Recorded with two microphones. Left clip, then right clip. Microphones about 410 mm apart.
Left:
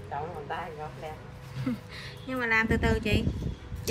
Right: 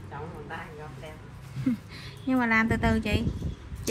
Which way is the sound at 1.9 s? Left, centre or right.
Centre.